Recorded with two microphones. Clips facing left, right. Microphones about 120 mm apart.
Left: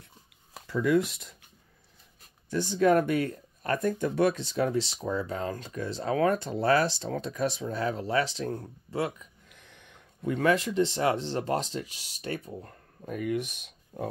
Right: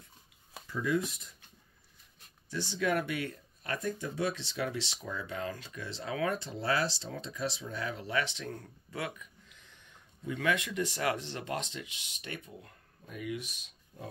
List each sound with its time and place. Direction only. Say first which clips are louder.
0.7 s speech: left 7 dB; 80° left
2.5 s speech: left 9 dB; 45° left (ahead or behind); by 9.3 s 30° left (ahead or behind)
9.5 s a sound: left 5 dB; 65° left (ahead or behind)
10.3 s speech: left 7 dB; 40° left (ahead or behind); by 14.0 s 55° left (ahead or behind)